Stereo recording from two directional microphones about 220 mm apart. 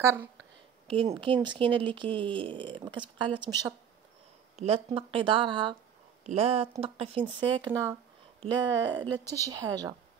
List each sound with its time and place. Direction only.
0.0 s a woman's voice: 10° right (ahead or behind)
0.8 s speech: 25° right (ahead or behind)
4.6 s a woman's voice: 25° right (ahead or behind)